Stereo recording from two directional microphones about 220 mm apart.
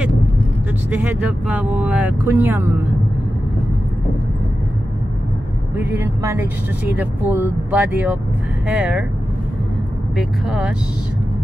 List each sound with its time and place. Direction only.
0.8 s speech: 10° right (ahead or behind)
5.8 s speech: 10° right (ahead or behind)
10.1 s speech: centre (ahead or behind)